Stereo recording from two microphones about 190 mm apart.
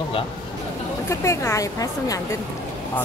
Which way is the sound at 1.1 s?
15° left (ahead or behind).